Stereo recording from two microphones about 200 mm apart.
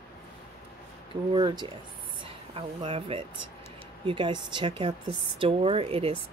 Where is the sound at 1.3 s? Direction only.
20° right (ahead or behind).